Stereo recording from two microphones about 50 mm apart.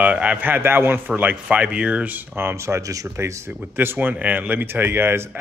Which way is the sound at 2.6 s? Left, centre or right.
Right.